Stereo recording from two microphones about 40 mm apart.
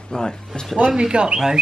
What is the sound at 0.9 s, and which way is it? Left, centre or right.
Speech, right.